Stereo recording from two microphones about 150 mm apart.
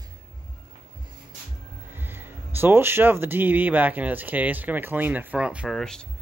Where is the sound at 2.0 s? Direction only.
15° right (ahead or behind); by 6.1 s 5° left (ahead or behind).